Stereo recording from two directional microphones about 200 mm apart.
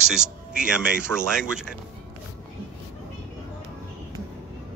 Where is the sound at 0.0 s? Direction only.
5° right (ahead or behind).